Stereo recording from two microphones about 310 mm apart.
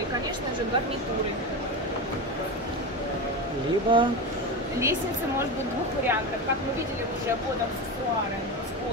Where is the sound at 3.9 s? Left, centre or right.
Centre.